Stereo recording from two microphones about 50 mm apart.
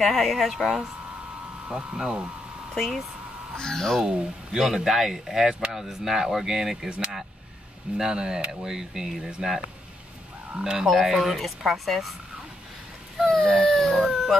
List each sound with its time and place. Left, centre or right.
0.0 s speech: centre
1.7 s speech: centre
2.7 s speech: centre
3.5 s speech: centre
4.0 s speech: centre
6.9 s vehicle: centre
8.0 s speech: centre
10.6 s speech: centre
13.4 s baby cry: centre
14.0 s howl: centre